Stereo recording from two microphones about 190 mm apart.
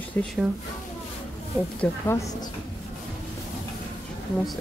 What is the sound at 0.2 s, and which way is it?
Speech, 10° left (ahead or behind).